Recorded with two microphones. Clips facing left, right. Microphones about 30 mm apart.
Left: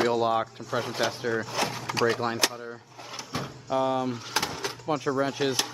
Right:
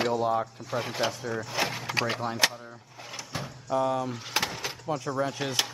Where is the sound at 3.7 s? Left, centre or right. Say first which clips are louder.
Left 1 dB; centre.